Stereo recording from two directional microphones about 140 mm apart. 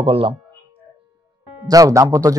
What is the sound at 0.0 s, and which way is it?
Speech, 40° right (ahead or behind).